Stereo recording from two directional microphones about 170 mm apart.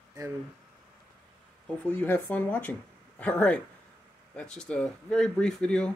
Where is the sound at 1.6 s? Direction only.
10° left (ahead or behind).